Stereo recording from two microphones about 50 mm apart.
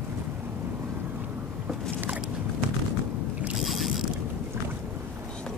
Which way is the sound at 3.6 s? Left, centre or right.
Centre.